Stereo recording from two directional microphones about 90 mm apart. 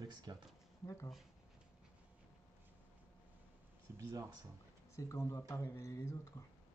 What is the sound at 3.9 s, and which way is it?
Speech, 35° right (ahead or behind).